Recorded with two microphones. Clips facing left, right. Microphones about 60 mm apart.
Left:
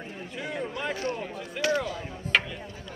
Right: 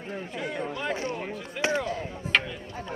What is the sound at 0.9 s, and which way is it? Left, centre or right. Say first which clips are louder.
Speech: even; right.